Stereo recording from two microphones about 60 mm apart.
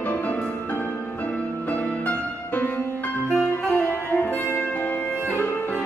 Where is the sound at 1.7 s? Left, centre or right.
Left.